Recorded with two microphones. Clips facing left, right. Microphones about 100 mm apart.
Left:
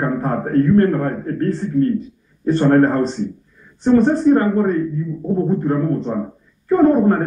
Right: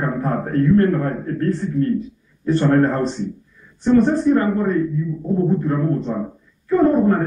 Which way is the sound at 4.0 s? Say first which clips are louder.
Left 2 dB; 35° left (ahead or behind).